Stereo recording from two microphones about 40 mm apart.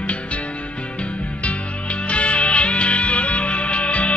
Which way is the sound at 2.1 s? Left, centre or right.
Left.